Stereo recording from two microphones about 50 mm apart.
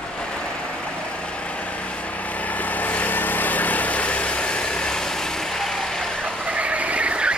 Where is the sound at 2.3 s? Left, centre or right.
Left; by 6.2 s centre.